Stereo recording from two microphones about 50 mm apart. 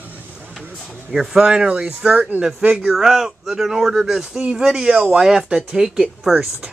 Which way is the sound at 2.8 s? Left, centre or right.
Centre.